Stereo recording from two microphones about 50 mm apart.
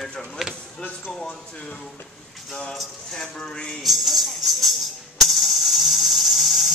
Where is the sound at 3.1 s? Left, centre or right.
Centre.